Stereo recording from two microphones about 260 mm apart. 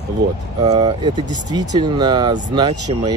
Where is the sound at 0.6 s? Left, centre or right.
Centre.